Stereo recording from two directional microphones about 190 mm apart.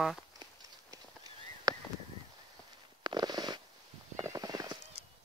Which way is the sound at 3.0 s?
20° right (ahead or behind).